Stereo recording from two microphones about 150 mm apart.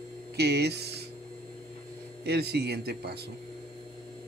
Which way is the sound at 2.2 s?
90° right.